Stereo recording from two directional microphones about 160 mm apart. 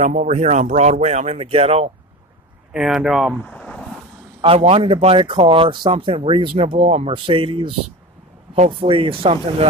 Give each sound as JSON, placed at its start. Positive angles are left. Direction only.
{"t": 0.0, "sound": "speech", "side_deg": -50}
{"t": 2.7, "sound": "speech", "side_deg": -5}
{"t": 3.5, "sound": "vehicle", "side_deg": 10}
{"t": 4.4, "sound": "speech", "side_deg": -35}